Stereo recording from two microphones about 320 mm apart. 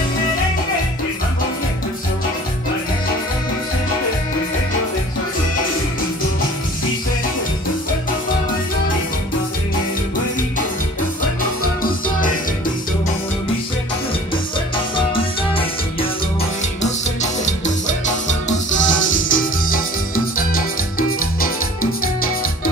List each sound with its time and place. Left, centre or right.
11.8 s music: left
15.0 s music: centre